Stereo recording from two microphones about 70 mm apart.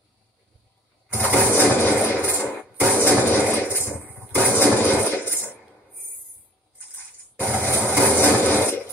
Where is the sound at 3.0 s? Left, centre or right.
Left.